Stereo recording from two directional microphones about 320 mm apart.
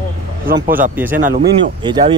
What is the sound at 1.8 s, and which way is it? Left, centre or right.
Speech, centre.